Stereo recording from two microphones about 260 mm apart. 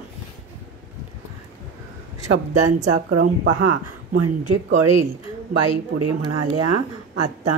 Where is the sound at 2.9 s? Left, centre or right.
Right.